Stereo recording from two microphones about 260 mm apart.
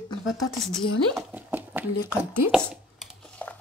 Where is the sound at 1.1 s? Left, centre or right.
Centre.